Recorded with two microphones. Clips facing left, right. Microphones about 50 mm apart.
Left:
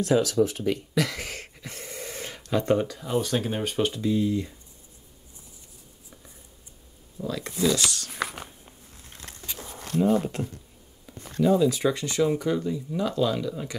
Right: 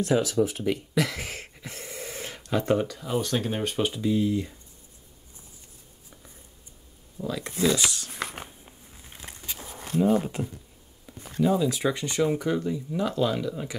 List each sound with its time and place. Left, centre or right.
0.0 s speech: centre
7.2 s speech: centre
7.7 s speech: centre
8.1 s a sound: centre
11.1 s speech: centre
11.9 s speech: right
12.3 s speech: centre